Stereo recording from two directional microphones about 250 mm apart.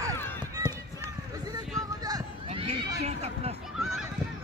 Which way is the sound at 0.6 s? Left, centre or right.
Centre.